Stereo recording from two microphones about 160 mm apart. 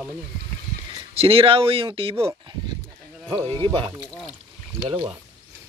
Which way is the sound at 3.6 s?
30° right (ahead or behind).